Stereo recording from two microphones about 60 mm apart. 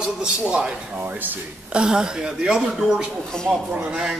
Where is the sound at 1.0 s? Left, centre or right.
Right.